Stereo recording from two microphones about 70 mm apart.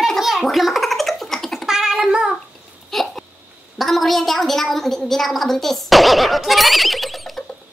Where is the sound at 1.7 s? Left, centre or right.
Centre.